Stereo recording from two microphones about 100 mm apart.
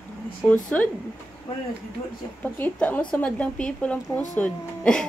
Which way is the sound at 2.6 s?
15° left (ahead or behind).